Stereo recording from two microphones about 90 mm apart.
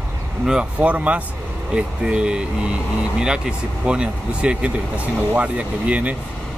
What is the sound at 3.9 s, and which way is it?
Speech, 10° right (ahead or behind).